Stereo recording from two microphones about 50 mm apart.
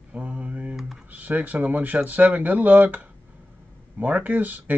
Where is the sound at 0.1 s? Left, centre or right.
Right.